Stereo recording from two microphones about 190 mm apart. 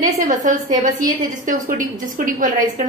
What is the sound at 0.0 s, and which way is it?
A woman's voice, 40° right (ahead or behind).